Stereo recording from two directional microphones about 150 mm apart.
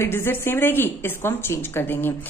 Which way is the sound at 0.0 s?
15° left (ahead or behind).